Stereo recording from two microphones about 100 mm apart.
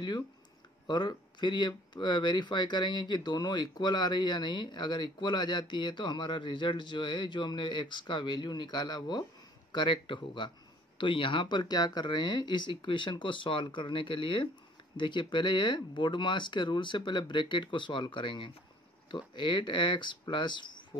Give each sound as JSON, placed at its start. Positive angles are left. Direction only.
{"t": 0.8, "sound": "speech", "side_deg": 45}